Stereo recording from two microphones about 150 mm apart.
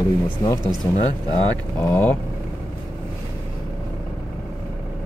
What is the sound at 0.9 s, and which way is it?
Speech, 20° left (ahead or behind).